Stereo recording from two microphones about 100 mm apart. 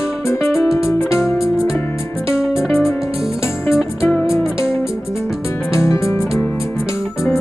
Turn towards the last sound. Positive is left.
turn(degrees=30)  # may be behind; listen again after turning